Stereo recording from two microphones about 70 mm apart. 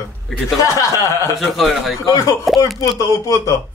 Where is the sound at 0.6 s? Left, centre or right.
Left.